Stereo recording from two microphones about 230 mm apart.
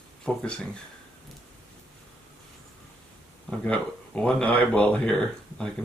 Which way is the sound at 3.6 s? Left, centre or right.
Centre.